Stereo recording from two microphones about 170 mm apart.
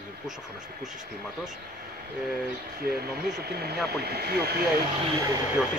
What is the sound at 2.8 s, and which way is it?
Speech, 65° right (ahead or behind).